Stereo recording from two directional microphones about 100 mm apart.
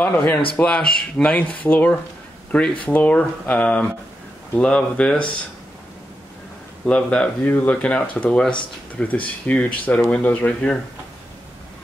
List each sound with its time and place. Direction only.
0.0 s speech: 20° left (ahead or behind)
6.9 s speech: 10° left (ahead or behind)